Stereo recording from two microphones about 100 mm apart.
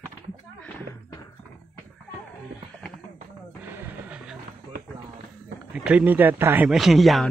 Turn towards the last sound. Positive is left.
turn(degrees=0)  # may be behind; listen again after turning